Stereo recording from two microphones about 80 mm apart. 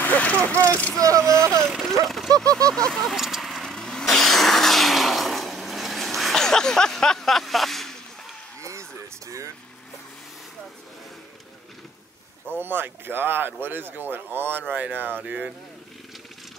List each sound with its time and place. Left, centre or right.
0.0 s vehicle: centre
0.9 s speech: right
1.6 s speech: centre
2.0 s a sound: centre
2.7 s speech: centre
3.2 s vehicle: centre
12.4 s speech: right